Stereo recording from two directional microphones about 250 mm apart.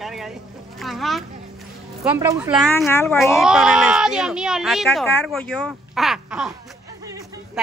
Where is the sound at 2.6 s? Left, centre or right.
Centre.